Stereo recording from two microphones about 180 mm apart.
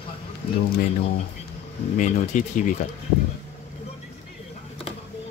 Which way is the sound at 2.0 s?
45° left (ahead or behind).